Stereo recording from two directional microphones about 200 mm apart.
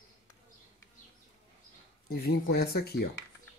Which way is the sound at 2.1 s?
50° left (ahead or behind).